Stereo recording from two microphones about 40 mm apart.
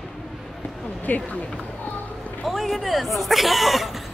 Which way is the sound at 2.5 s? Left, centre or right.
Centre.